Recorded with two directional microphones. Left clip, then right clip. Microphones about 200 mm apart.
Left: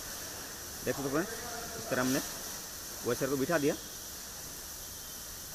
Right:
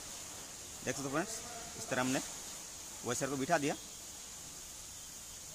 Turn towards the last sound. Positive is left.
turn(degrees=-35)  # may be behind; listen again after turning